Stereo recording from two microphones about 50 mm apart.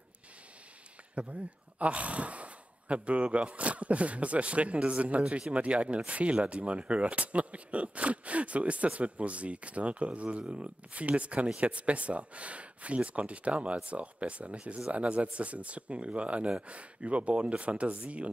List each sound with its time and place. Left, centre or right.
1.1 s speech: right